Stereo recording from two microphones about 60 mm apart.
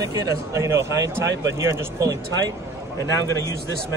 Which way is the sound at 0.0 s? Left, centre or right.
Right.